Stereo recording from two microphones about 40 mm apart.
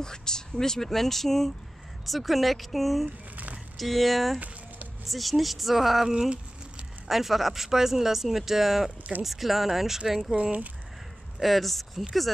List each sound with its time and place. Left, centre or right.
0.0 s speech: centre
11.3 s speech: centre